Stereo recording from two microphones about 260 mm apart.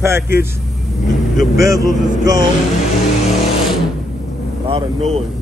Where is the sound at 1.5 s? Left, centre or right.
Centre.